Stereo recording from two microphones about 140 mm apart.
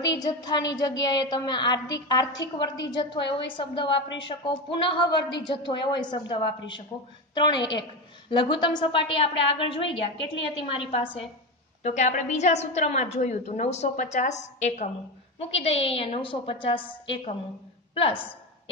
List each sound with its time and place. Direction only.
0.0 s a woman's voice: 25° left (ahead or behind)
11.8 s a woman's voice: 55° left (ahead or behind)
15.3 s a woman's voice: 45° left (ahead or behind)